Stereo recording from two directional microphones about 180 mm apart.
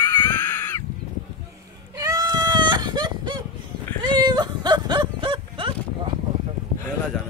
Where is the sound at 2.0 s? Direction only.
20° right (ahead or behind).